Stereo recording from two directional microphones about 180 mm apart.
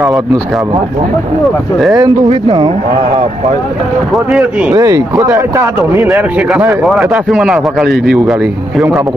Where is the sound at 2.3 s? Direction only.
35° right (ahead or behind).